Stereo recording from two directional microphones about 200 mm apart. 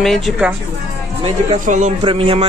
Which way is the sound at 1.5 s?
40° right (ahead or behind).